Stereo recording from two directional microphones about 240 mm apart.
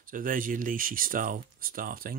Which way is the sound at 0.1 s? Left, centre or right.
Right.